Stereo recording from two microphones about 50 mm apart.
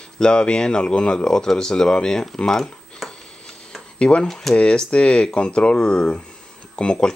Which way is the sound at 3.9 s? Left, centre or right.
Left.